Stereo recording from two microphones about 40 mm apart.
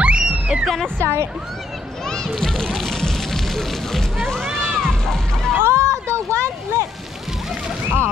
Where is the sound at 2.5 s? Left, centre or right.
Centre.